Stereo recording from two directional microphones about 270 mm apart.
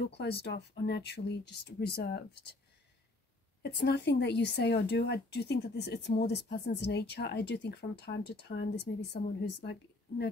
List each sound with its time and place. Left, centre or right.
0.0 s a woman's voice: left
3.6 s a woman's voice: left